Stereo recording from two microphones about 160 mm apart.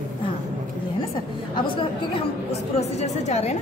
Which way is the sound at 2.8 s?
45° left (ahead or behind).